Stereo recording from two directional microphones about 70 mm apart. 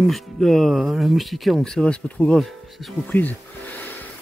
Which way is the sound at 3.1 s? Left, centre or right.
Left.